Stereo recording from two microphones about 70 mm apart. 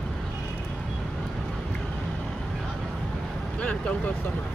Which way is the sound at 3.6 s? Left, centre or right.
Centre.